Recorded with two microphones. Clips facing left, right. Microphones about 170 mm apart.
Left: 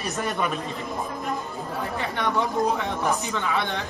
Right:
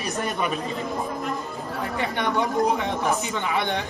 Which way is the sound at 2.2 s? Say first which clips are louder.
Right 1 dB; 15° right (ahead or behind).